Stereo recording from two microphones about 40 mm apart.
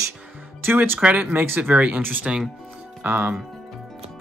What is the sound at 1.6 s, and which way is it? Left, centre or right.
Speech, right.